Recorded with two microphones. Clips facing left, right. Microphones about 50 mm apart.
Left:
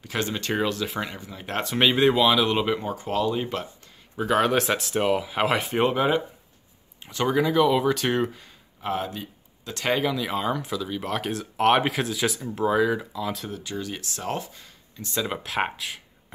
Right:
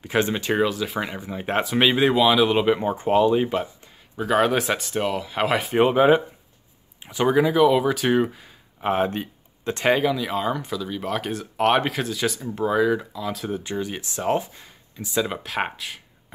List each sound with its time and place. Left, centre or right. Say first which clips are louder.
0.0 s speech: right 6 dB; right
1.6 s speech: right 1 dB; centre
2.8 s speech: right 7 dB; right
4.2 s speech: right 1 dB; centre
8.8 s speech: right 6 dB; right
9.8 s speech: right 4 dB; centre
13.5 s speech: right 5 dB; right; by 16.0 s centre